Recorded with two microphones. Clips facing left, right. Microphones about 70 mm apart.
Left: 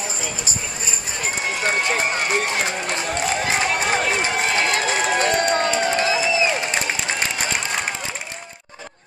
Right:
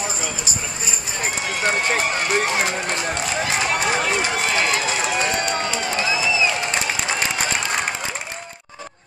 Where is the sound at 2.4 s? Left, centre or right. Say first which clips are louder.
Right 2 dB; right.